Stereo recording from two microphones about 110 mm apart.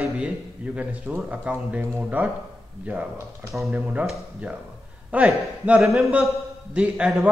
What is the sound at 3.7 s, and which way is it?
Speech, 10° right (ahead or behind).